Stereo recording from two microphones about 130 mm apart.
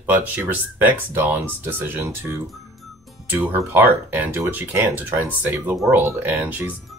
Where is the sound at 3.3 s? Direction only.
15° right (ahead or behind).